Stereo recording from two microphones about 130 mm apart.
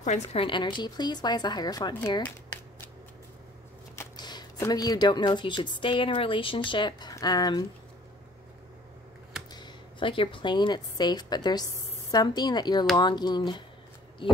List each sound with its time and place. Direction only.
0.0 s a woman's voice: 55° left (ahead or behind)
0.5 s a woman's voice: 35° left (ahead or behind)
4.2 s a woman's voice: 30° left (ahead or behind)
9.5 s a woman's voice: 35° left (ahead or behind)